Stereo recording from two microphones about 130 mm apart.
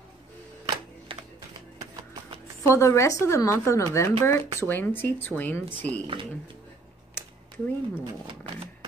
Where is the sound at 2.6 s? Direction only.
25° left (ahead or behind).